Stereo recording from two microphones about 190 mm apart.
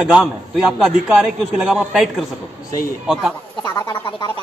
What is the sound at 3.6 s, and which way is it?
Speech, 20° left (ahead or behind).